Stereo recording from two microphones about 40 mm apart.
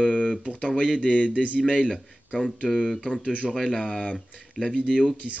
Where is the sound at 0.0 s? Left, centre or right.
Left.